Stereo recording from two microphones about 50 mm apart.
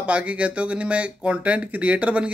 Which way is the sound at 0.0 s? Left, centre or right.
Right.